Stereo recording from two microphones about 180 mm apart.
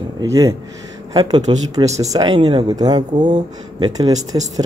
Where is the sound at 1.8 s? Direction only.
40° right (ahead or behind).